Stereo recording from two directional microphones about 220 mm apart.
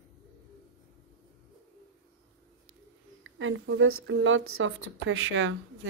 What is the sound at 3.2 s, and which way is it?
Speech, 60° right (ahead or behind).